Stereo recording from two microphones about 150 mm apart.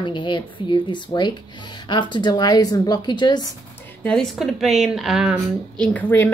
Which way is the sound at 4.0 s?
5° left (ahead or behind).